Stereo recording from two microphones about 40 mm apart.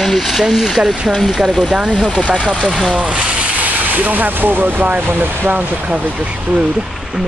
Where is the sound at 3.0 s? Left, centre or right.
Right.